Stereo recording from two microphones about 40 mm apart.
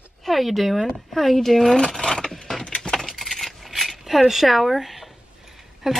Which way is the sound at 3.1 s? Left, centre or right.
Centre.